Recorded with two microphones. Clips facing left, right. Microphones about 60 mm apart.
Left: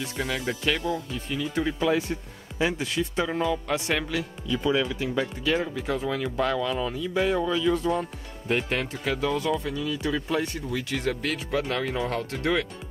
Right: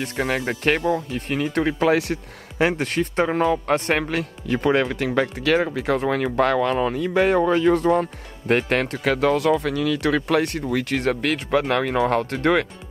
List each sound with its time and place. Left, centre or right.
0.0 s speech: right
2.6 s speech: right